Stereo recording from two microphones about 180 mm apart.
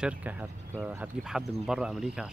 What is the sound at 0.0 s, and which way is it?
Speech, 5° right (ahead or behind).